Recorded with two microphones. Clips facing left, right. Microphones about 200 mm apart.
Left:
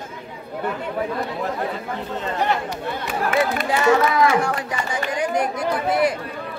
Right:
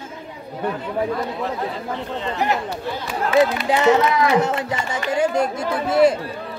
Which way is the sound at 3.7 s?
20° right (ahead or behind).